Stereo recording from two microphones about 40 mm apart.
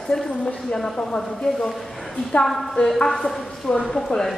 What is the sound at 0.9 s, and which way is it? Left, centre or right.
Speech, left.